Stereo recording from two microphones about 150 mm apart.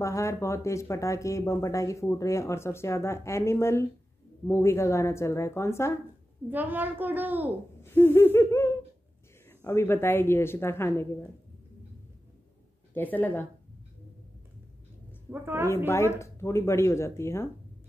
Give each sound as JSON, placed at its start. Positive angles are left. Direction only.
{"t": 0.0, "sound": "speech", "side_deg": 20}
{"t": 6.5, "sound": "a child's voice", "side_deg": -10}
{"t": 7.8, "sound": "speech", "side_deg": 15}
{"t": 12.9, "sound": "speech", "side_deg": 10}
{"t": 15.4, "sound": "a child's voice", "side_deg": -15}
{"t": 16.2, "sound": "speech", "side_deg": 20}